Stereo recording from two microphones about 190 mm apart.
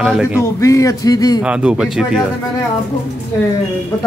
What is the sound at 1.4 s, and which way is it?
Speech, 5° right (ahead or behind).